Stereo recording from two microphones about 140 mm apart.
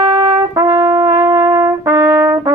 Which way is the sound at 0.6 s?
15° right (ahead or behind).